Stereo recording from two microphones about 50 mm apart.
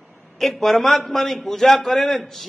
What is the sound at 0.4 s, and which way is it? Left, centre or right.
A man's voice, centre.